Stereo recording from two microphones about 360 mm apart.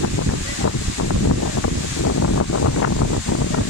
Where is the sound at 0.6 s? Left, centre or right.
Left.